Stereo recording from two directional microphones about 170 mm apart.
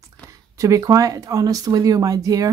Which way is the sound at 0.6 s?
20° right (ahead or behind).